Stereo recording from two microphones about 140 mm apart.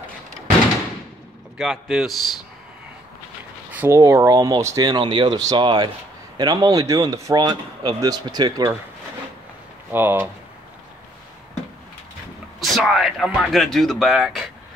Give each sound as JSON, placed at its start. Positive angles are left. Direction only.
{"t": 1.6, "sound": "speech", "side_deg": -5}
{"t": 3.7, "sound": "speech", "side_deg": -15}
{"t": 9.8, "sound": "speech", "side_deg": -15}
{"t": 12.5, "sound": "speech", "side_deg": 0}